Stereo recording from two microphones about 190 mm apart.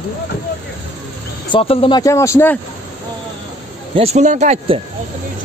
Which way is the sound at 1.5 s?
30° left (ahead or behind).